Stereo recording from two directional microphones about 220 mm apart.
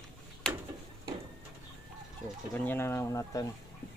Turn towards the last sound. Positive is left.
turn(degrees=15)  # may be behind; listen again after turning